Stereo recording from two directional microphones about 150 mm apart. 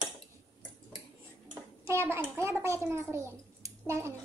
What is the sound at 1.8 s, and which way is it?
A child's voice, 15° right (ahead or behind).